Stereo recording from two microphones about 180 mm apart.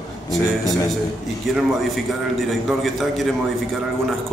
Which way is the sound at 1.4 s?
Centre (ahead or behind).